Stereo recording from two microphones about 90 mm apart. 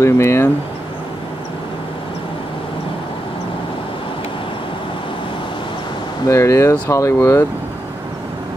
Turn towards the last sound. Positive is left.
turn(degrees=35)  # may be behind; listen again after turning